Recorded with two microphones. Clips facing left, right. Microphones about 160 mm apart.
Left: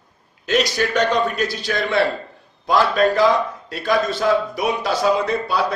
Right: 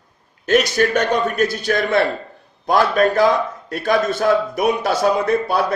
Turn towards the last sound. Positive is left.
turn(degrees=-55)  # may be behind; listen again after turning